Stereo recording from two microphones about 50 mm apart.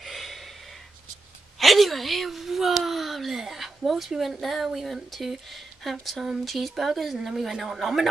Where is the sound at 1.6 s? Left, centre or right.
Centre.